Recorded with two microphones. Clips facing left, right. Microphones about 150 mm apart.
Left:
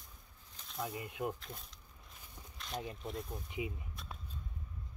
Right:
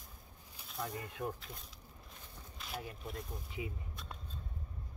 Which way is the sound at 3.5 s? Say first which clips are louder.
Left 3 dB; 20° left (ahead or behind).